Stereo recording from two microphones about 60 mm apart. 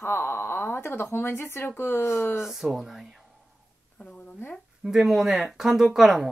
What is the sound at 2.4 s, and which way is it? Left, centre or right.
Speech, centre.